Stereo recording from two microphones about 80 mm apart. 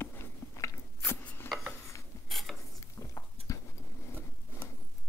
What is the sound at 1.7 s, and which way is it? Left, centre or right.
Dishes, left.